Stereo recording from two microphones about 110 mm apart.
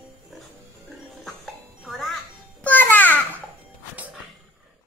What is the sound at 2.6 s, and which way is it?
Babbling, 15° left (ahead or behind).